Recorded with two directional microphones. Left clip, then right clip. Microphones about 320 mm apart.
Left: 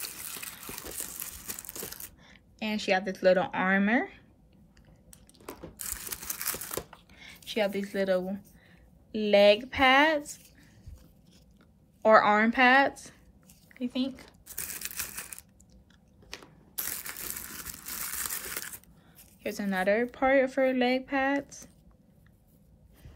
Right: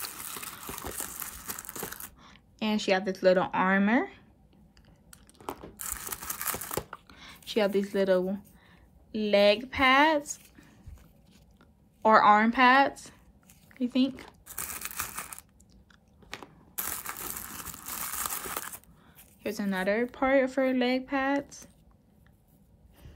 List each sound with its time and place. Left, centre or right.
0.0 s a sound: centre
5.4 s crumpling: centre
9.1 s speech: centre
12.0 s a woman's voice: centre
13.7 s crumpling: centre
16.9 s crumpling: centre
19.4 s a woman's voice: centre